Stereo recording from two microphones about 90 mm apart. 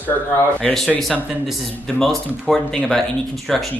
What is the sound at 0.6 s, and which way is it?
Speech, 10° left (ahead or behind).